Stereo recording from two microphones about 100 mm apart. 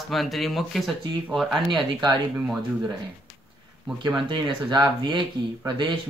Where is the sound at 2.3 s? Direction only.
5° right (ahead or behind).